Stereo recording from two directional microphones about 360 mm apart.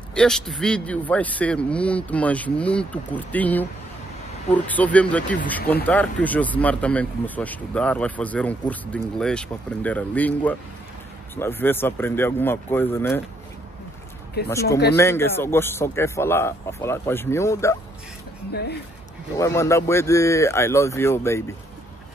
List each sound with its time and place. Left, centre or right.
0.1 s speech: centre
14.5 s speech: centre
18.5 s speech: left
19.3 s speech: centre